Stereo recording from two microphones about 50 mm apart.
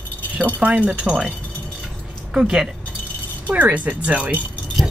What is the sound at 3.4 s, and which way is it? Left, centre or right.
Speech, right.